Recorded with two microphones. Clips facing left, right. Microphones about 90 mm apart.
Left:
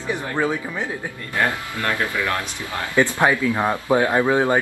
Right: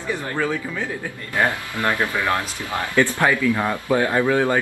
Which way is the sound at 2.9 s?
20° left (ahead or behind).